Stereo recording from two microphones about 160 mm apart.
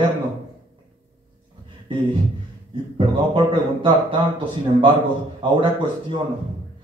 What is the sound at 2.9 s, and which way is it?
A man's voice, 35° right (ahead or behind).